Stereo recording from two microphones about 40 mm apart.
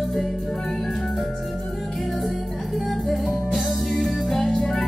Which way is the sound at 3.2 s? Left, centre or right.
Centre.